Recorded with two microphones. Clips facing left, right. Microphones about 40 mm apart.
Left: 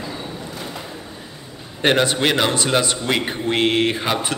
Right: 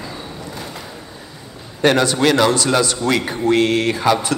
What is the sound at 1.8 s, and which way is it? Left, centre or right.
A man's voice, left.